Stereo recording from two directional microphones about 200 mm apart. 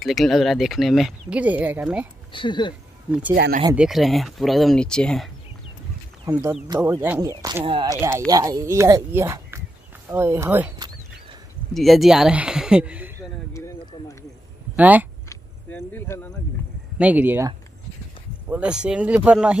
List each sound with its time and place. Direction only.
0.0 s speech: centre (ahead or behind)
2.3 s speech: 25° left (ahead or behind)
3.3 s speech: 55° right (ahead or behind)
3.7 s speech: centre (ahead or behind)
6.2 s speech: 15° right (ahead or behind)
11.7 s speech: centre (ahead or behind)
13.5 s clip-clop: 15° left (ahead or behind)
14.8 s speech: 10° right (ahead or behind)
15.2 s vehicle: 10° left (ahead or behind)
17.0 s speech: 10° right (ahead or behind)
18.5 s speech: 5° right (ahead or behind)